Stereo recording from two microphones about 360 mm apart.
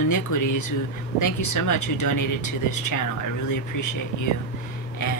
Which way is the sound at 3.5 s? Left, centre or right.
Left.